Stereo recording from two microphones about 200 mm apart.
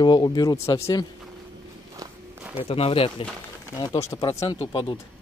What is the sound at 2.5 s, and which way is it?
Speech, 30° left (ahead or behind).